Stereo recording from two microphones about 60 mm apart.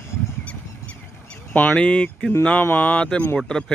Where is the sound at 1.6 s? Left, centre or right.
Left.